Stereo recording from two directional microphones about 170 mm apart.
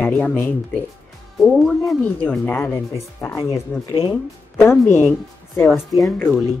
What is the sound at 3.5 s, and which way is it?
Speech, 30° left (ahead or behind).